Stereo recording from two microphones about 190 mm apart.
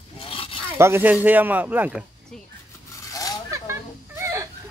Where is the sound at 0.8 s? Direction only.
10° right (ahead or behind).